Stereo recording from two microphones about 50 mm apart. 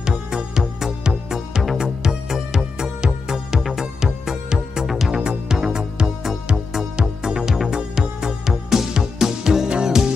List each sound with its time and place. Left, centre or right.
0.0 s music: centre